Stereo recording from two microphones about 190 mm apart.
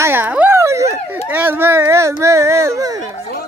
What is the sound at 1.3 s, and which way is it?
Speech, 10° right (ahead or behind).